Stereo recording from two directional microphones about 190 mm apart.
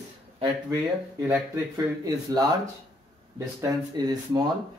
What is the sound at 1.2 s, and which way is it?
Speech, 15° right (ahead or behind).